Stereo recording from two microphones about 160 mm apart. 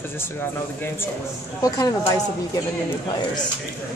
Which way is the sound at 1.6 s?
20° left (ahead or behind).